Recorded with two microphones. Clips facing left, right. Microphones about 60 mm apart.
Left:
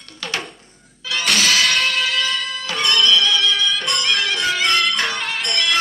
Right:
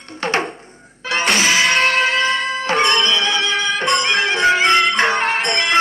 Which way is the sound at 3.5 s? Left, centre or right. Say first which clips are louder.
Right 2 dB; right.